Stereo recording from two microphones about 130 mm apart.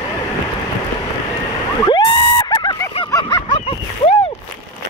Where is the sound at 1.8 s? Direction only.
35° left (ahead or behind).